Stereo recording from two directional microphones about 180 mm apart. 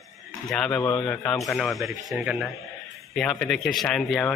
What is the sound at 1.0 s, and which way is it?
Speech, 5° left (ahead or behind).